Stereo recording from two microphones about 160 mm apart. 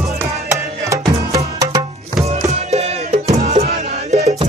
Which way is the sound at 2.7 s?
45° right (ahead or behind).